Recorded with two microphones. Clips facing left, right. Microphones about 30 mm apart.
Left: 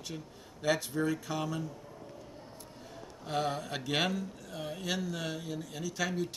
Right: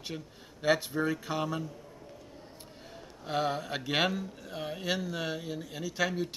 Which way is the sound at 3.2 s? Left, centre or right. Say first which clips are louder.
Right 2 dB; centre.